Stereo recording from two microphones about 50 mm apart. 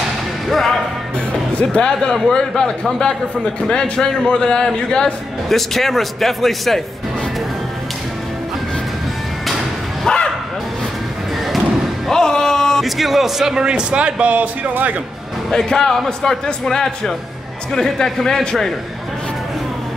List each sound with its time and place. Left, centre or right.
0.5 s music: centre
1.8 s speech: left
2.1 s a man's voice: centre
5.5 s a man's voice: centre
10.0 s bow-wow: centre
12.1 s music: centre
12.8 s a man's voice: centre
13.6 s speech: centre
15.5 s a man's voice: centre